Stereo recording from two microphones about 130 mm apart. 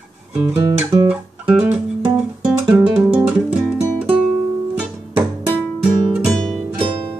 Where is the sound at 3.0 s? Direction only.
10° right (ahead or behind).